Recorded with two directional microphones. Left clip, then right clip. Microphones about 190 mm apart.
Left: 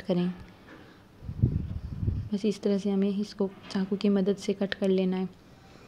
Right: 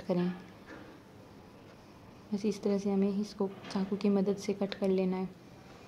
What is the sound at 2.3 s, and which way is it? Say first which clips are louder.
A woman's voice: left 4 dB; 20° left (ahead or behind).